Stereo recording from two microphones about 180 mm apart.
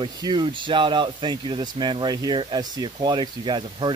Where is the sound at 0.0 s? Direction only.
25° right (ahead or behind).